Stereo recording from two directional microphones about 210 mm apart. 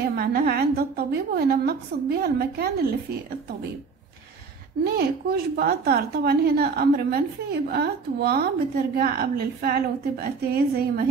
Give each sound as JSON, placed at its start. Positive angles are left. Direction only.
{"t": 0.0, "sound": "a woman's voice", "side_deg": -45}
{"t": 4.8, "sound": "a woman's voice", "side_deg": -50}